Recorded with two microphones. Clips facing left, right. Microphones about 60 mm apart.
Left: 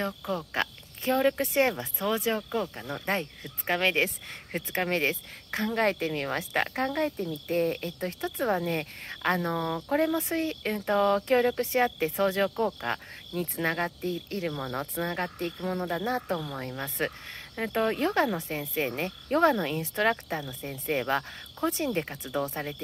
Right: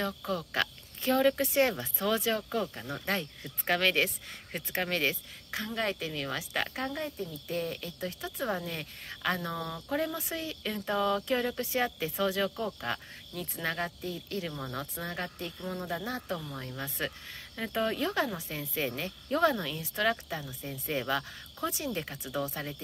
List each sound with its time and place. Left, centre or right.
0.3 s speech: left
2.9 s speech: left
7.1 s speech: left